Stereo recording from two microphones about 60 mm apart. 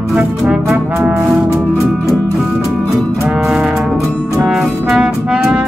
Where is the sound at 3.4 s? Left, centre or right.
Centre.